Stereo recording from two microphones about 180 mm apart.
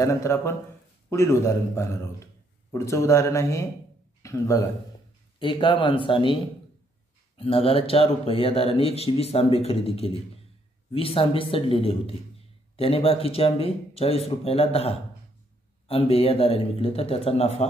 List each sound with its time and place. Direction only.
0.0 s speech: 15° left (ahead or behind)
5.4 s speech: 25° left (ahead or behind)